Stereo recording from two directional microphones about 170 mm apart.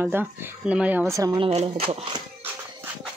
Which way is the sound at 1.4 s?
35° right (ahead or behind).